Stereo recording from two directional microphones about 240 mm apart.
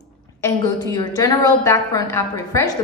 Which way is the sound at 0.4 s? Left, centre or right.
Centre.